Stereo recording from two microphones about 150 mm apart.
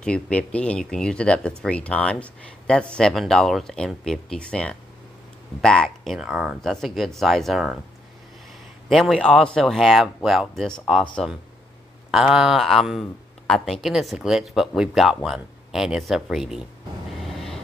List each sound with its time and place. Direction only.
0.0 s speech: 5° left (ahead or behind)
8.8 s speech: centre (ahead or behind)
17.1 s a sound: centre (ahead or behind)